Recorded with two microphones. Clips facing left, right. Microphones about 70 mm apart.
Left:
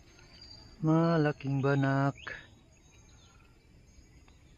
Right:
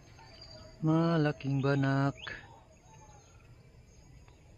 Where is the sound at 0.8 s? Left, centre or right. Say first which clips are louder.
Left 2 dB; centre.